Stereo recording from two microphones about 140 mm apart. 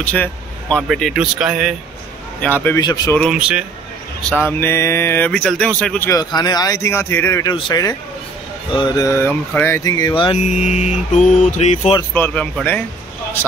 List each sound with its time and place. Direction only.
0.0 s speech: 10° left (ahead or behind)
2.4 s speech: 15° left (ahead or behind)
2.8 s speech: 30° left (ahead or behind)
3.2 s speech: 5° right (ahead or behind)
4.2 s speech: 10° left (ahead or behind)
6.0 s speech: 25° left (ahead or behind)
7.5 s speech: 30° left (ahead or behind); by 9.8 s 15° left (ahead or behind)
9.8 s speech: 25° left (ahead or behind)
10.4 s mantra: 60° left (ahead or behind)
11.5 s speech: 55° left (ahead or behind)
12.1 s speech: 15° left (ahead or behind)